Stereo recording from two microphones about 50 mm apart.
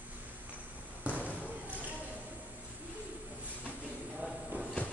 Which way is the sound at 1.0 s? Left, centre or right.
Right.